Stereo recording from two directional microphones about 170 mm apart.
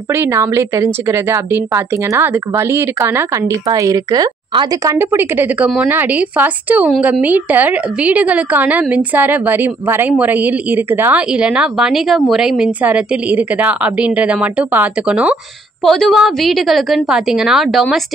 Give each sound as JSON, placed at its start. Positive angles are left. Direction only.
{"t": 0.1, "sound": "a woman's voice", "side_deg": -15}